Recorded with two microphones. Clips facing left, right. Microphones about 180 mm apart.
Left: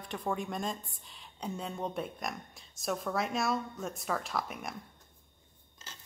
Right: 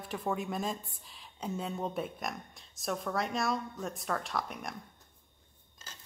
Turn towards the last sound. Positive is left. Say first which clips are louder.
# even
turn(degrees=5)  # may be behind; listen again after turning